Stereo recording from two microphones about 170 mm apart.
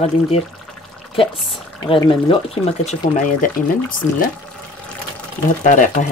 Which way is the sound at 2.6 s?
40° left (ahead or behind).